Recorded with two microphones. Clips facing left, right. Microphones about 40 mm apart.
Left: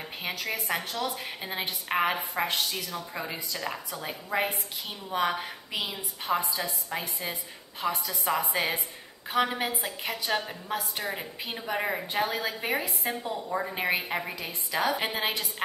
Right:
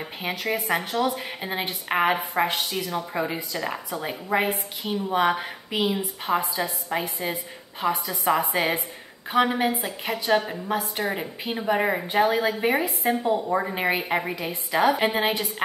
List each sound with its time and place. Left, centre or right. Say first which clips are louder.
0.2 s a woman's voice: right 6 dB; centre
1.2 s a woman's voice: right 4 dB; centre
2.7 s a woman's voice: right 7 dB; right
5.8 s a woman's voice: right 10 dB; right
6.6 s a woman's voice: right 6 dB; centre
8.5 s a woman's voice: right 5 dB; right
9.3 s a woman's voice: right 6 dB; centre
13.1 s a woman's voice: right 10 dB; right